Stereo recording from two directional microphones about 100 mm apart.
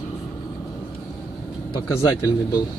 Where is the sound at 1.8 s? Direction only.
30° left (ahead or behind).